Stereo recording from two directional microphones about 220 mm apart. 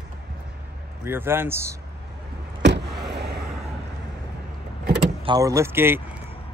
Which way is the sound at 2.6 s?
50° right (ahead or behind).